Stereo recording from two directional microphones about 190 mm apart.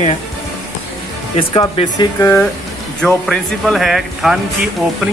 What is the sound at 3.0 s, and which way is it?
Speech, 5° left (ahead or behind).